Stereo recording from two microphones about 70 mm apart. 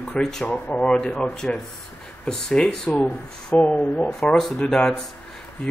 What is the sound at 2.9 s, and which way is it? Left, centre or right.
Speech, left.